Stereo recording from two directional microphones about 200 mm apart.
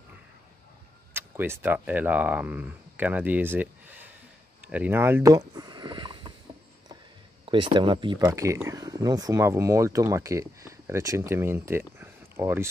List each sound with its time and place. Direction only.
1.1 s speech: 10° right (ahead or behind)
7.4 s speech: 25° right (ahead or behind)